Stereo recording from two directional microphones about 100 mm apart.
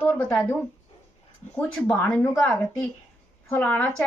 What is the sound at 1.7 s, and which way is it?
A woman's voice, 10° left (ahead or behind).